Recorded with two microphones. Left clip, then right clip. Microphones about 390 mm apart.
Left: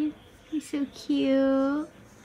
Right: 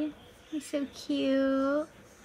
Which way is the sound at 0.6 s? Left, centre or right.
Centre.